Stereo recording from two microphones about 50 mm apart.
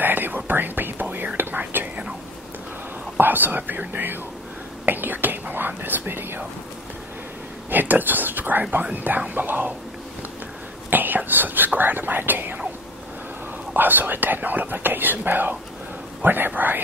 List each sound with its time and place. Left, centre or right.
0.0 s whispering: right
3.2 s speech: right
4.8 s whispering: right
7.7 s speech: right
10.9 s speech: right
13.7 s speech: right